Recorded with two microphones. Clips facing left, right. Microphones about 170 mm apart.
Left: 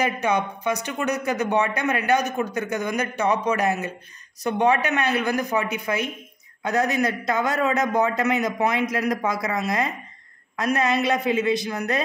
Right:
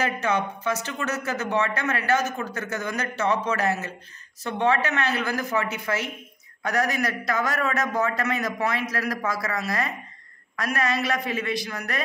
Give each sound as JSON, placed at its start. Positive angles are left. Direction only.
{"t": 0.0, "sound": "a man's voice", "side_deg": 15}